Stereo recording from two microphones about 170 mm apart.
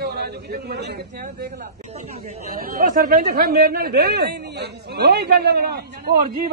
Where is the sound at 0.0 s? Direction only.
70° right (ahead or behind).